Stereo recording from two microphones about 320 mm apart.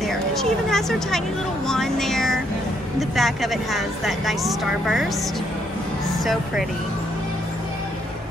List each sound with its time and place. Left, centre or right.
0.0 s a woman's voice: centre